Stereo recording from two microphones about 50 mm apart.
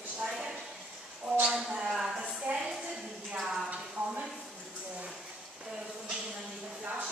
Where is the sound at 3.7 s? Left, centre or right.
Centre.